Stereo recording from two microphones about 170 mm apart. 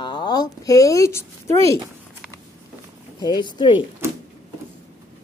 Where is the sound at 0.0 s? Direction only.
25° left (ahead or behind).